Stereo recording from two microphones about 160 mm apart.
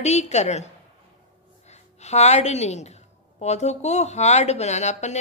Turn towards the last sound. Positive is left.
turn(degrees=45)  # may be behind; listen again after turning